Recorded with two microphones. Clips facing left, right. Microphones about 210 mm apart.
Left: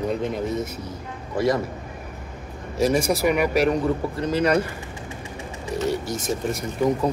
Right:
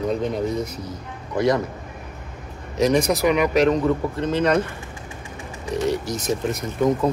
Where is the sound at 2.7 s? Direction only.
5° left (ahead or behind).